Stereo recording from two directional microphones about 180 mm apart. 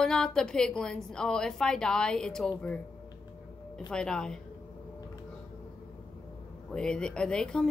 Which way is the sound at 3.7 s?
5° left (ahead or behind).